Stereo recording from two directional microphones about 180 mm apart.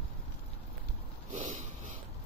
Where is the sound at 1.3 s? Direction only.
45° right (ahead or behind).